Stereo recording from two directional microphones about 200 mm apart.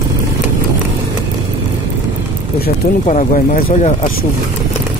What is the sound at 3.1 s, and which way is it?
Speech, 35° left (ahead or behind).